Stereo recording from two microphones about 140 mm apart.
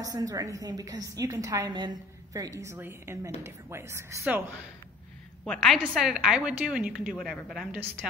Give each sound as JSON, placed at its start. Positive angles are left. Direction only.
{"t": 0.0, "sound": "a woman's voice", "side_deg": -25}
{"t": 5.4, "sound": "a woman's voice", "side_deg": 0}